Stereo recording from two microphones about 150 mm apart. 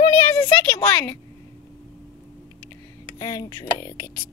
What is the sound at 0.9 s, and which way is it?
Speech, 10° left (ahead or behind).